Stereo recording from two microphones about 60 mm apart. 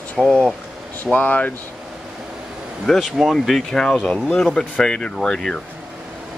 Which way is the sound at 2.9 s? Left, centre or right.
Centre.